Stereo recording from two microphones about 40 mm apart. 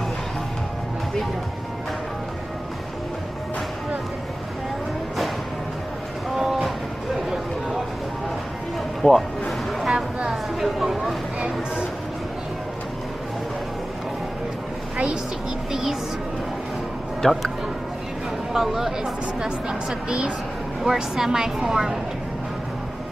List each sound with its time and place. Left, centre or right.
6.3 s train: centre
9.0 s speech: left
9.7 s a sound: centre
11.4 s music: right
15.7 s music: centre
17.2 s speech: centre
18.5 s speech: centre
19.4 s a woman's voice: centre
20.8 s speech: centre